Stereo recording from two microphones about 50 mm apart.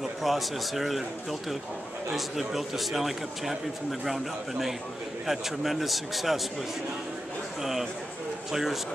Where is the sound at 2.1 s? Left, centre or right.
Centre.